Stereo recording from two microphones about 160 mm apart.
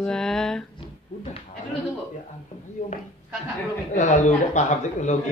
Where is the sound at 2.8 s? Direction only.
50° left (ahead or behind).